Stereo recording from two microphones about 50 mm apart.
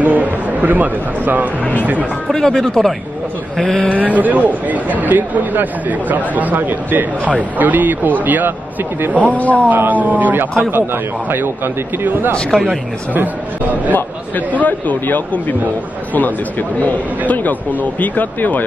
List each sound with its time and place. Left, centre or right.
0.0 s a sound: right
1.6 s a man's voice: left
2.3 s speech: centre
3.9 s speech: right
9.2 s a man's voice: left
9.7 s a man's voice: right
12.4 s speech: centre
13.1 s speech: right
13.9 s a man's voice: left